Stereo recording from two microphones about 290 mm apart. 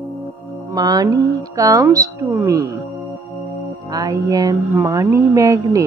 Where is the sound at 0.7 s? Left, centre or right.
Centre.